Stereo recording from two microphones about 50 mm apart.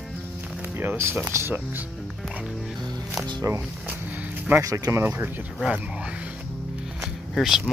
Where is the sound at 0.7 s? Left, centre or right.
Right.